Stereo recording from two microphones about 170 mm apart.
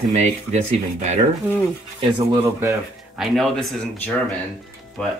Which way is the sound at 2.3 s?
15° right (ahead or behind).